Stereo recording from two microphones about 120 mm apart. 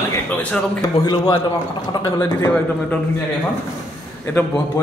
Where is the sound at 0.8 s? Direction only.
35° left (ahead or behind).